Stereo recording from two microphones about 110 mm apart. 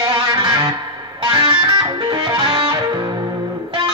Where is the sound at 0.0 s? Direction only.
45° right (ahead or behind).